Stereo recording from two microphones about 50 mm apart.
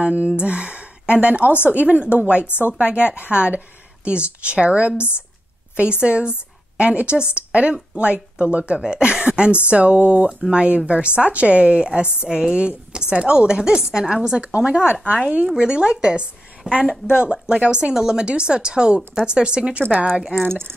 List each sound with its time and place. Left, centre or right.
0.0 s a woman's voice: right
0.4 s gasp: right
1.1 s a woman's voice: right
15.5 s a woman's voice: centre